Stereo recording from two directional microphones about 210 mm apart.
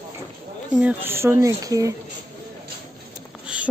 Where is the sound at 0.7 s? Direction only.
10° right (ahead or behind).